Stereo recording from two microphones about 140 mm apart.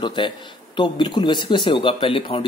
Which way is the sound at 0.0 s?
35° left (ahead or behind).